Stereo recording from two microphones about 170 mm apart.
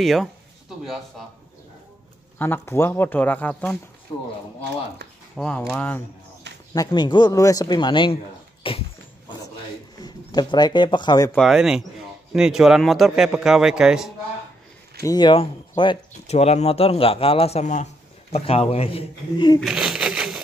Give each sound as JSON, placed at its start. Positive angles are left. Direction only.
{"t": 0.0, "sound": "a man's voice", "side_deg": 0}
{"t": 2.3, "sound": "a man's voice", "side_deg": 10}
{"t": 4.1, "sound": "speech", "side_deg": 25}
{"t": 5.3, "sound": "a man's voice", "side_deg": 5}
{"t": 6.7, "sound": "speech", "side_deg": 25}
{"t": 8.6, "sound": "dog", "side_deg": 30}
{"t": 10.0, "sound": "speech", "side_deg": 25}
{"t": 11.3, "sound": "a man's voice", "side_deg": 0}
{"t": 15.0, "sound": "speech", "side_deg": 25}
{"t": 19.6, "sound": "a sound", "side_deg": -5}